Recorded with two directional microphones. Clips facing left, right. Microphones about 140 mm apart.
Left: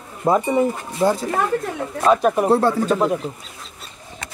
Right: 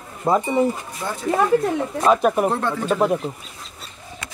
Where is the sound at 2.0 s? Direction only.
5° right (ahead or behind).